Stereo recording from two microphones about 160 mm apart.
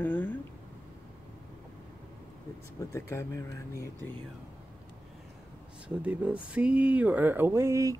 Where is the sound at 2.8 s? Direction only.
20° left (ahead or behind).